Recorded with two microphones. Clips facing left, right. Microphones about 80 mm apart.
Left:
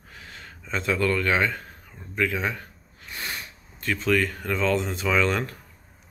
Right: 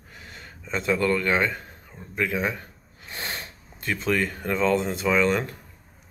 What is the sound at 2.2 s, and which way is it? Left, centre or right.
Speech, centre.